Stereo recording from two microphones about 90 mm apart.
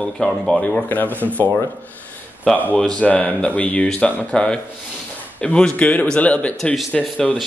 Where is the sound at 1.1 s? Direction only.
20° right (ahead or behind).